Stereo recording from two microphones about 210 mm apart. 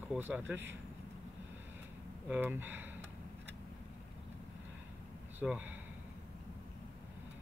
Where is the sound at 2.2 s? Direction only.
10° right (ahead or behind).